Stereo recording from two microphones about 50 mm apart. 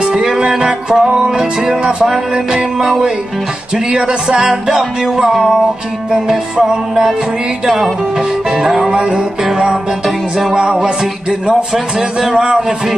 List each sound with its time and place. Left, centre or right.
0.0 s music: centre
10.6 s music: centre